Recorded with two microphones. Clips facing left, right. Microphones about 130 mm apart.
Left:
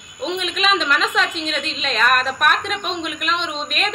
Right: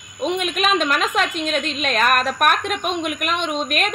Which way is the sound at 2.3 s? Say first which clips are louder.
Right 1 dB; 50° right (ahead or behind).